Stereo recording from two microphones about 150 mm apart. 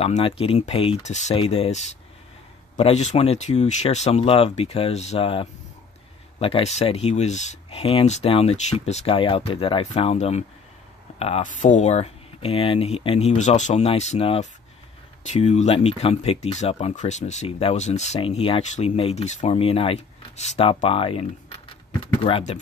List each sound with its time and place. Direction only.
0.0 s speech: 40° left (ahead or behind)
1.3 s speech: 40° left (ahead or behind)
11.4 s speech: 55° left (ahead or behind); by 22.4 s 35° left (ahead or behind)